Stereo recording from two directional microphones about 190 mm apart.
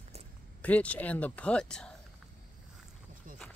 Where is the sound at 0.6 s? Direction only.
5° left (ahead or behind).